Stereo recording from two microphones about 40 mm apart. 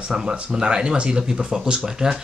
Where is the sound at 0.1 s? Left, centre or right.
Centre.